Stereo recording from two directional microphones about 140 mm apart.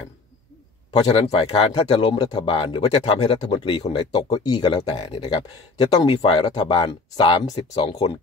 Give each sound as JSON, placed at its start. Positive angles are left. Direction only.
{"t": 0.9, "sound": "speech", "side_deg": 40}
{"t": 1.7, "sound": "speech", "side_deg": 35}
{"t": 5.2, "sound": "speech", "side_deg": 30}